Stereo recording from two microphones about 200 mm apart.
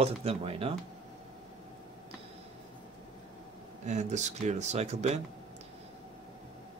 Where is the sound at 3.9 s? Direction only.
35° right (ahead or behind).